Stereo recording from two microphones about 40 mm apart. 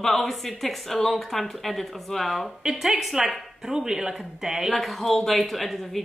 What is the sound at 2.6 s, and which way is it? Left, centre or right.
A woman's voice, centre.